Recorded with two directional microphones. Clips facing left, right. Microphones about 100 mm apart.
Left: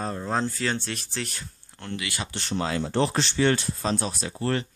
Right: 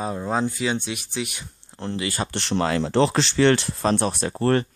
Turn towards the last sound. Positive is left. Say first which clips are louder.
# right 7 dB
turn(degrees=-50)  # may be behind; listen again after turning